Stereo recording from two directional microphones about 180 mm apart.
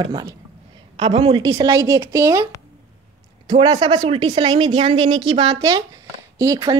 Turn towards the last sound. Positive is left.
turn(degrees=-20)  # may be behind; listen again after turning